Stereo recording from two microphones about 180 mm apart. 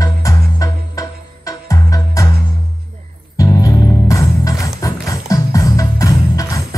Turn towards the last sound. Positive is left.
turn(degrees=20)  # may be behind; listen again after turning